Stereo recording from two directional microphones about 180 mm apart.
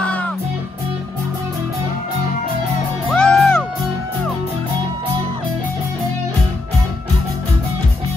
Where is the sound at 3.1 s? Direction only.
5° left (ahead or behind).